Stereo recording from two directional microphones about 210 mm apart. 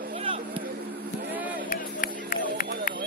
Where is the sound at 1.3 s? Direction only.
5° right (ahead or behind).